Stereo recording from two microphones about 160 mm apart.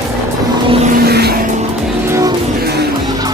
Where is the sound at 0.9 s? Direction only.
80° right.